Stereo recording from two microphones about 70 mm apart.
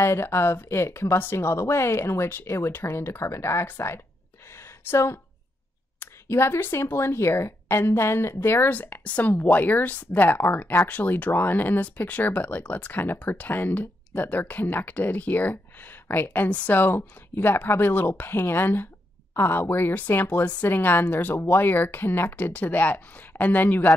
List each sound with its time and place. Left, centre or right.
0.0 s speech: left
4.6 s a sound: left
5.9 s speech: left